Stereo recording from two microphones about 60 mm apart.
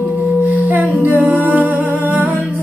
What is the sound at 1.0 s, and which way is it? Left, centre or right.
Humming, right.